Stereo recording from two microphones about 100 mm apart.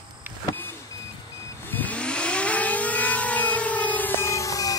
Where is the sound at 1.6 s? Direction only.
15° left (ahead or behind); by 4.8 s 35° left (ahead or behind).